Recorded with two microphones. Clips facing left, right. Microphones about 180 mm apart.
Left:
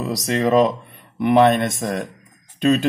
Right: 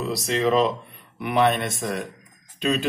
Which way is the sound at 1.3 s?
45° left (ahead or behind).